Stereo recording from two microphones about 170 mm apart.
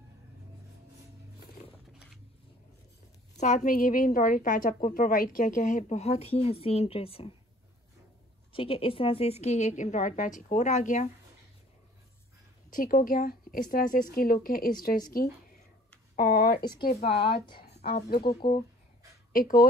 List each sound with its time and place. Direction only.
3.3 s a woman's voice: 45° left (ahead or behind)
8.5 s a woman's voice: 35° left (ahead or behind)
12.6 s a woman's voice: 50° left (ahead or behind)
19.3 s speech: 55° left (ahead or behind)